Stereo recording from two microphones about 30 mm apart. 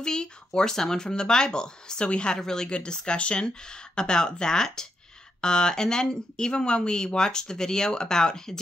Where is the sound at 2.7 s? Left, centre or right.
Left.